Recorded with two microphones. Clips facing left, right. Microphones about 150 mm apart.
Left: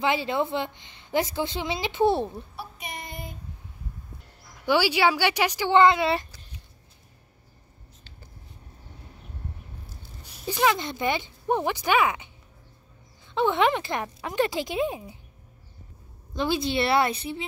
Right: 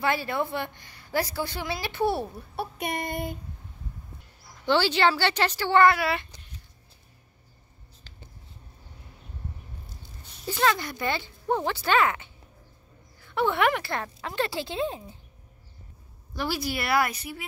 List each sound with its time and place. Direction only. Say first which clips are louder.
0.0 s a woman's voice: left 2 dB; 20° left (ahead or behind)
2.5 s child singing: right 7 dB; 60° right (ahead or behind)
4.6 s speech: left 1 dB; 10° left (ahead or behind)
10.4 s speech: left 1 dB; 15° left (ahead or behind)
16.3 s a woman's voice: left 5 dB; 20° left (ahead or behind)